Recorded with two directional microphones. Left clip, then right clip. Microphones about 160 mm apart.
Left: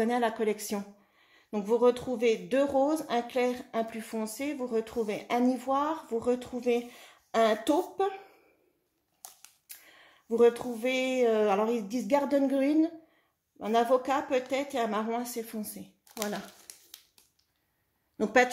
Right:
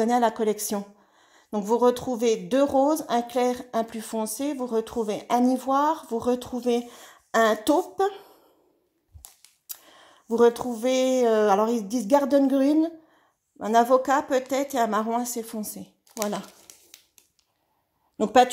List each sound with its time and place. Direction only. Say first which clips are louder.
0.0 s speech: right 6 dB; 45° right (ahead or behind)
9.7 s speech: right 7 dB; 45° right (ahead or behind)
18.1 s a woman's voice: right 6 dB; 40° right (ahead or behind)